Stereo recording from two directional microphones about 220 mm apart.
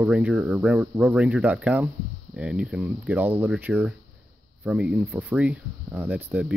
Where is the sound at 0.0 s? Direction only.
5° right (ahead or behind).